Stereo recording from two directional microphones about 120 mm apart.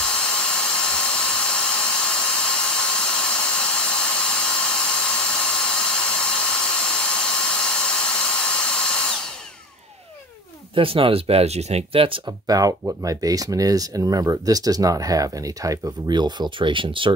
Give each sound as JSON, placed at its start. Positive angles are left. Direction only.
{"t": 0.0, "sound": "dental drill", "side_deg": 5}
{"t": 10.7, "sound": "speech", "side_deg": -50}
{"t": 12.3, "sound": "speech", "side_deg": -30}